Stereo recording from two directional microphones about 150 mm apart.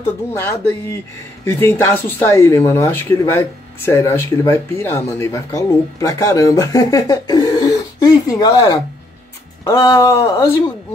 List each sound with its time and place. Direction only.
0.3 s speech: 15° left (ahead or behind)